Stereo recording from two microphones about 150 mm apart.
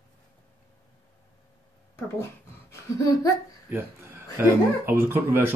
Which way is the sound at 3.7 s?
15° right (ahead or behind).